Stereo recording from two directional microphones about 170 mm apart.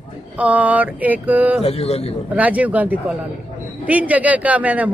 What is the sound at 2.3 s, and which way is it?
Speech, 10° right (ahead or behind).